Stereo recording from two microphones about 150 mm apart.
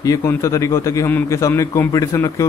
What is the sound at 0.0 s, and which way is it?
A man's voice, 20° left (ahead or behind).